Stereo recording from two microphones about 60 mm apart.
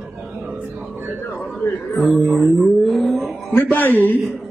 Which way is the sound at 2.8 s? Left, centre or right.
Centre.